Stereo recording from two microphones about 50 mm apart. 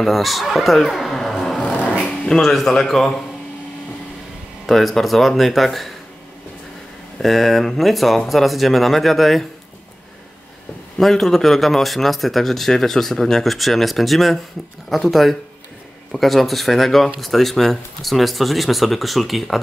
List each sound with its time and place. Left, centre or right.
0.0 s a man's voice: centre
1.6 s music: left
2.2 s a man's voice: centre
4.6 s a man's voice: centre
7.2 s a man's voice: centre
11.0 s a man's voice: centre